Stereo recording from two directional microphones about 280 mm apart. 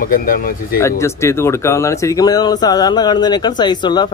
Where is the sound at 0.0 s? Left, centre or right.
Left.